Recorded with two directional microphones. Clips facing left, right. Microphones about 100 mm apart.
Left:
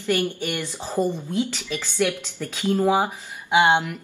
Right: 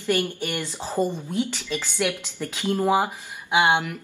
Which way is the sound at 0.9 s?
15° left (ahead or behind).